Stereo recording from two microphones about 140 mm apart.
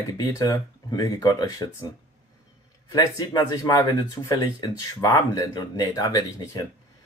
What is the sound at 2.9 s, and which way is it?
Speech, 25° left (ahead or behind).